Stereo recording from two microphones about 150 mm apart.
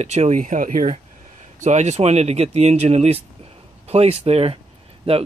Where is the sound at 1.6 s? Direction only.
50° right (ahead or behind).